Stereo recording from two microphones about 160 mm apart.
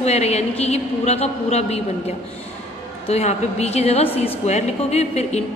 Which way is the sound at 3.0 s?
45° left (ahead or behind).